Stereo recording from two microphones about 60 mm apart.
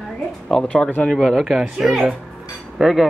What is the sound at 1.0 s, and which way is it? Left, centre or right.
Speech, centre.